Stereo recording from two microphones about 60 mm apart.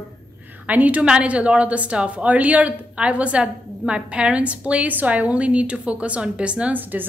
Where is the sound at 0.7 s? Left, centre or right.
Right.